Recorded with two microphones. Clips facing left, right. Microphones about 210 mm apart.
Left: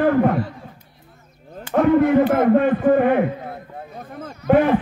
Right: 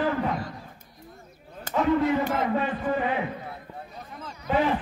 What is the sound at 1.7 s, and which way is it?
A man's voice, 55° left (ahead or behind).